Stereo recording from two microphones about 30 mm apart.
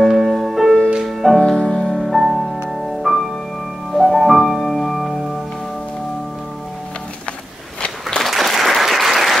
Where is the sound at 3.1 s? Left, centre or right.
Centre.